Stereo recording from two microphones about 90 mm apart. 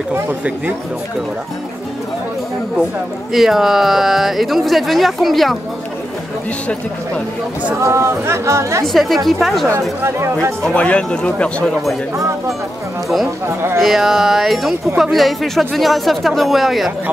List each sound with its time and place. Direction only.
3.3 s speech: 5° right (ahead or behind)
7.8 s speech: 30° right (ahead or behind)
8.8 s speech: centre (ahead or behind)
9.7 s speech: 30° right (ahead or behind)
10.6 s speech: 10° left (ahead or behind)
13.5 s speech: 25° right (ahead or behind)
13.7 s speech: centre (ahead or behind)